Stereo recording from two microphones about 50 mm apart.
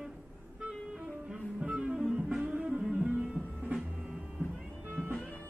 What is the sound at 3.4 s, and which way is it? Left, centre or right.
Music, right.